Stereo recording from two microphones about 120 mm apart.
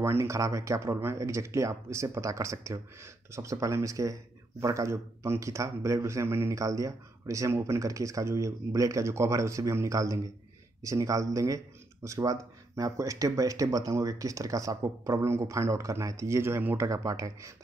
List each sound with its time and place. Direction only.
0.0 s speech: 20° right (ahead or behind)